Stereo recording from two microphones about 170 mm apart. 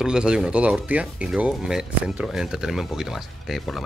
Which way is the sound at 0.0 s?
5° right (ahead or behind).